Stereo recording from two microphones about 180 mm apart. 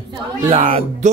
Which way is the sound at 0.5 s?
40° right (ahead or behind).